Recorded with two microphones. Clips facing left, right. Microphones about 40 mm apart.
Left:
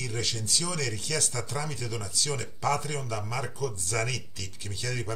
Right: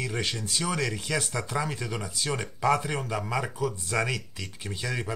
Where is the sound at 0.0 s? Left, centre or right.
Right.